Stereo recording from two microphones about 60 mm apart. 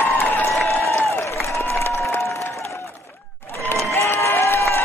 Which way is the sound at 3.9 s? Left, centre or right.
Left.